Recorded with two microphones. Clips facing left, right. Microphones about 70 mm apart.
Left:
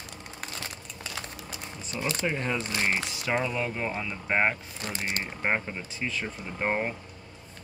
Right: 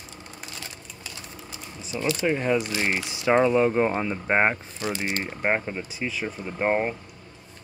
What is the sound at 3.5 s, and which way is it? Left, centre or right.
Speech, right.